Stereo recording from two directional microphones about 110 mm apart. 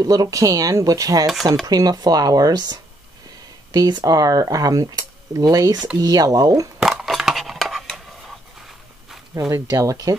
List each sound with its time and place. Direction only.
0.0 s speech: 30° right (ahead or behind)
6.8 s a sound: 5° right (ahead or behind)
9.3 s speech: 30° right (ahead or behind)